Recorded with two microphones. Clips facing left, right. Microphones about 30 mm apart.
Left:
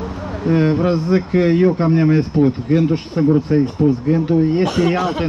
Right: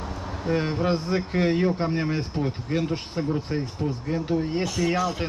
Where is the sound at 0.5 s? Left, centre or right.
Centre.